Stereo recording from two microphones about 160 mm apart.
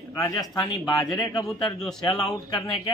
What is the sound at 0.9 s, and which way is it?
Speech, centre (ahead or behind).